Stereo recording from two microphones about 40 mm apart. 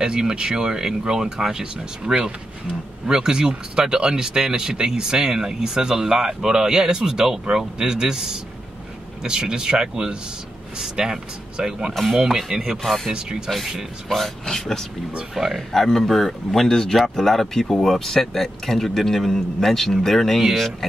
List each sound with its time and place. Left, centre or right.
0.0 s speech: centre
11.9 s speech: centre
12.2 s speech: centre
12.8 s speech: centre
15.3 s speech: centre
15.7 s speech: centre